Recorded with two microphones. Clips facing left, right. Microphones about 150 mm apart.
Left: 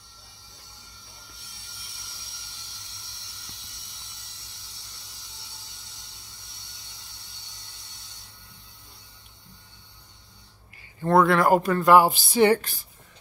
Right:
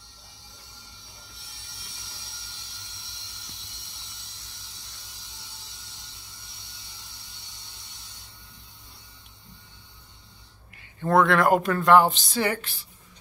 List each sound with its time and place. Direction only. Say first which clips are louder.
11.0 s speech: left 1 dB; centre (ahead or behind)
12.7 s a woman's voice: left 2 dB; 45° left (ahead or behind)